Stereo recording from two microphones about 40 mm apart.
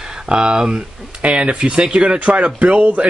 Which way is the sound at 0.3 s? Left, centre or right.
Centre.